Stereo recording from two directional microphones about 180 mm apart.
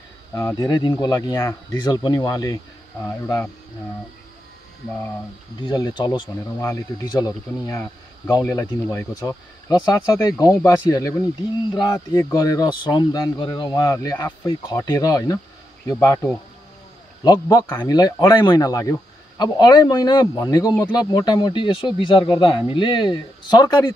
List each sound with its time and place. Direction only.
0.3 s speech: 15° left (ahead or behind)
5.6 s speech: 25° left (ahead or behind)
17.2 s speech: 20° left (ahead or behind)